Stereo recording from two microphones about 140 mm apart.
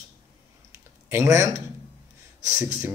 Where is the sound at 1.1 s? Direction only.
20° right (ahead or behind).